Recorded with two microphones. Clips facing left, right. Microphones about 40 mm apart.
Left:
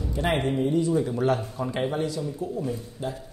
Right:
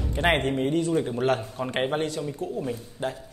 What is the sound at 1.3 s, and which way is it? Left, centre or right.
Speech, right.